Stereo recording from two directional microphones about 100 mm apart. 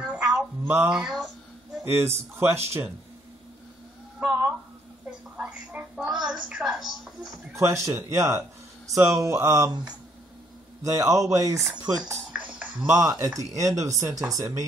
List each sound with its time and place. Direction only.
0.0 s music: 10° right (ahead or behind)
0.8 s speech: 10° right (ahead or behind)
1.8 s speech: 25° right (ahead or behind)
4.2 s a sound: 10° right (ahead or behind)
5.4 s a woman's voice: 15° right (ahead or behind)
7.5 s speech: 30° right (ahead or behind)
10.8 s speech: 35° right (ahead or behind)
12.3 s music: 15° right (ahead or behind)
13.2 s speech: 35° right (ahead or behind)